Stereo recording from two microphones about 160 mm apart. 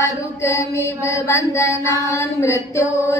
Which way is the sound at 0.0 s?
20° left (ahead or behind).